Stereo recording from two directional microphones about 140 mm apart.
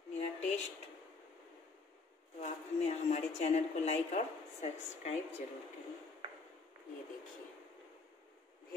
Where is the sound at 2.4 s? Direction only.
50° left (ahead or behind).